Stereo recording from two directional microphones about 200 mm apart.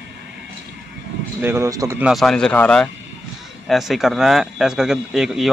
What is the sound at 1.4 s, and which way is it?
Speech, 10° right (ahead or behind).